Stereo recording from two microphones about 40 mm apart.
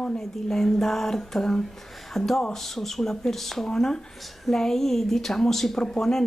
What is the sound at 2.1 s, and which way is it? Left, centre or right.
Speech, centre.